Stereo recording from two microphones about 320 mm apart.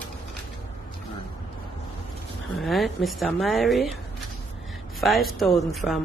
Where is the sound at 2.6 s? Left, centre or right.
Centre.